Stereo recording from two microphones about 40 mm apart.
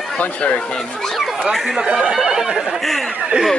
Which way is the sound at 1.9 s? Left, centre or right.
Right.